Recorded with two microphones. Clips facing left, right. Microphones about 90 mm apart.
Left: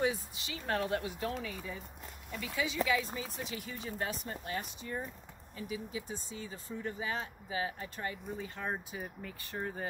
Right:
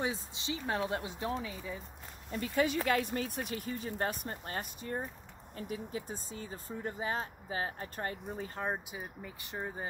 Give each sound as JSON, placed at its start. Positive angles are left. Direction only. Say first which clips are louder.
{"t": 0.0, "sound": "speech", "louder": "left 3 dB", "side_deg": -25}
{"t": 2.3, "sound": "speech", "louder": "right 4 dB", "side_deg": -45}
{"t": 3.5, "sound": "speech", "louder": "right 2 dB", "side_deg": -45}
{"t": 8.6, "sound": "speech", "louder": "left 1 dB", "side_deg": -15}